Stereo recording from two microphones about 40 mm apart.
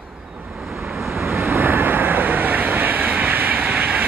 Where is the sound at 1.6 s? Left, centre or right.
Right.